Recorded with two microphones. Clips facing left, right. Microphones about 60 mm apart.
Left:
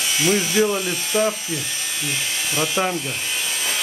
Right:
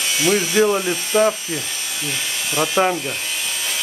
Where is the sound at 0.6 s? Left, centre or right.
Right.